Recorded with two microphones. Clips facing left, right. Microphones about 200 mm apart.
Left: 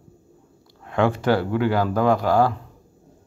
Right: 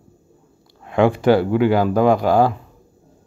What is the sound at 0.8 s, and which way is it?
Speech, 15° right (ahead or behind).